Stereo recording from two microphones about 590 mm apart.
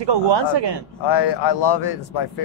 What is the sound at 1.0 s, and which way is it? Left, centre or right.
A man's voice, left.